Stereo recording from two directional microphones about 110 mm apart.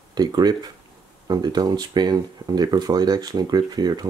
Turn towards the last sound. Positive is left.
turn(degrees=-35)  # may be behind; listen again after turning